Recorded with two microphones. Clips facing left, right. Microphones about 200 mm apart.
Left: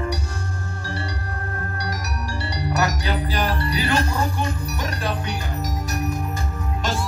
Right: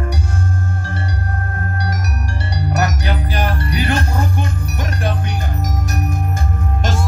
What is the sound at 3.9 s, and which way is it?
Music, 50° right (ahead or behind).